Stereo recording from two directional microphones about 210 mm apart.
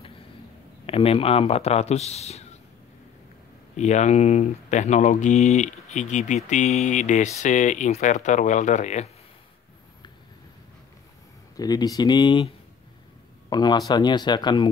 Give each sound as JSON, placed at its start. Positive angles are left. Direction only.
{"t": 0.8, "sound": "speech", "side_deg": 25}
{"t": 3.7, "sound": "speech", "side_deg": 35}
{"t": 11.5, "sound": "speech", "side_deg": 20}
{"t": 13.5, "sound": "speech", "side_deg": 20}